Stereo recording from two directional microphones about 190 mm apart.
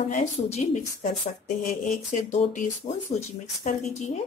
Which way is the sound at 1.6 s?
40° left (ahead or behind).